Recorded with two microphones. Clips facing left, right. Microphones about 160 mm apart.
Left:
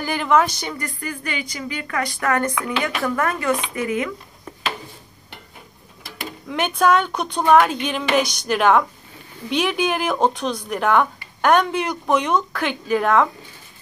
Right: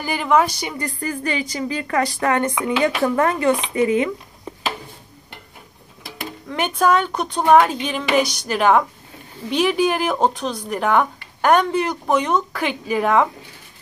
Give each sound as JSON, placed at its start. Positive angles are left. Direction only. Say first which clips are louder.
{"t": 0.0, "sound": "a woman's voice", "louder": "right 1 dB", "side_deg": -5}
{"t": 0.7, "sound": "a woman's voice", "louder": "right 4 dB", "side_deg": -35}
{"t": 6.6, "sound": "speech", "louder": "even", "side_deg": -5}